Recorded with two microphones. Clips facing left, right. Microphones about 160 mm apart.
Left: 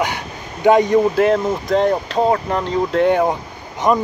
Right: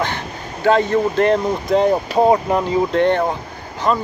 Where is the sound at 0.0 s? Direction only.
15° left (ahead or behind); by 2.9 s 10° right (ahead or behind).